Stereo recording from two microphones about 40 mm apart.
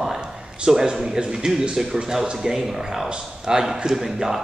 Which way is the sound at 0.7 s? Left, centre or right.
Centre.